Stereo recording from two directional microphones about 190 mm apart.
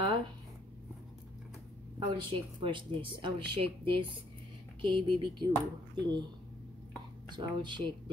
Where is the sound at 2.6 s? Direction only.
25° right (ahead or behind).